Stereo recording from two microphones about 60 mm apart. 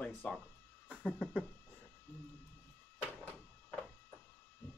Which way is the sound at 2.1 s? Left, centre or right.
Left.